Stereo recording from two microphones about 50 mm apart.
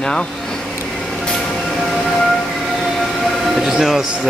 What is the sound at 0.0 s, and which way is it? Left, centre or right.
Speech, centre.